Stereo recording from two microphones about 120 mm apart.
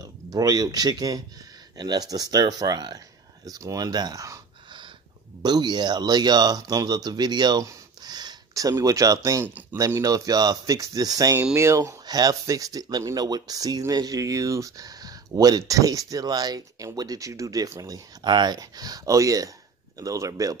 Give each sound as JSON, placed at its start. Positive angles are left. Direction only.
{"t": 0.0, "sound": "speech", "side_deg": -30}
{"t": 5.4, "sound": "speech", "side_deg": -35}